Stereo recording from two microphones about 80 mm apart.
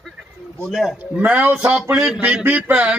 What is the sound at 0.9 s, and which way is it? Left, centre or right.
Speech, centre.